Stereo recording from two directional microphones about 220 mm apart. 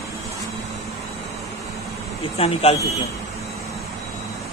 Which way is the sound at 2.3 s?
25° left (ahead or behind).